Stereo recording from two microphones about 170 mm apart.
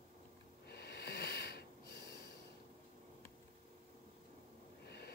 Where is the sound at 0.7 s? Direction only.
75° left (ahead or behind).